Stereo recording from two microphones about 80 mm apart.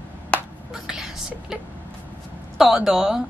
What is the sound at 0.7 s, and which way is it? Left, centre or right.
Whispering, centre.